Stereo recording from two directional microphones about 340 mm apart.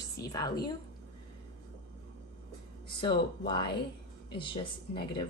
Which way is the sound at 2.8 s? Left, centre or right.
Centre.